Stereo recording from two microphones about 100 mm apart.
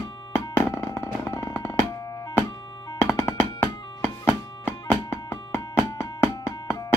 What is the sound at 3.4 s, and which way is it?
Music, 20° left (ahead or behind).